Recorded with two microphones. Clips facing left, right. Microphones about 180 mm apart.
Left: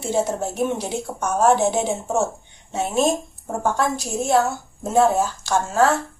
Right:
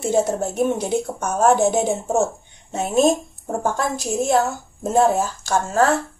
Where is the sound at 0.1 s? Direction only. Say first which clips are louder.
Right 2 dB; 50° right (ahead or behind).